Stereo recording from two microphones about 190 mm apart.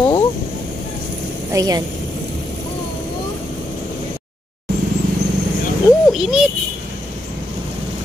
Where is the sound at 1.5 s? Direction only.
20° right (ahead or behind).